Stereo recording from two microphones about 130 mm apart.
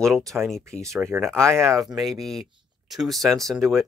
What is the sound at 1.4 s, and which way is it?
Speech, 20° right (ahead or behind).